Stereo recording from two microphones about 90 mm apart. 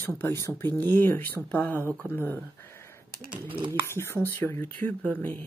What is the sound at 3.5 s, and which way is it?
Speech, 70° right (ahead or behind).